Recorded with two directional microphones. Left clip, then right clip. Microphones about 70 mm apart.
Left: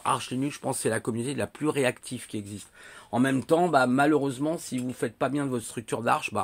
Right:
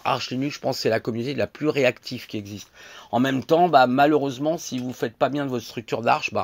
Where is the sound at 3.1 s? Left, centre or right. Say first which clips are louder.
Right 4 dB; right.